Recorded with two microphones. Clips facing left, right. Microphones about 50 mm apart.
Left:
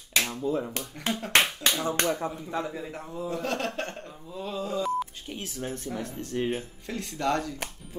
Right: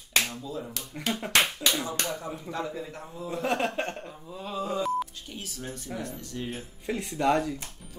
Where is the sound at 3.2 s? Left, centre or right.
Centre.